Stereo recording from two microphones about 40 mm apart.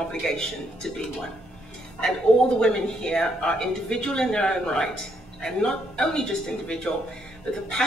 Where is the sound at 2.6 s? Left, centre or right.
Centre.